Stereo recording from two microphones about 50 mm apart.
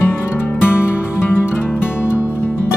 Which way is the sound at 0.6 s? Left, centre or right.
Left.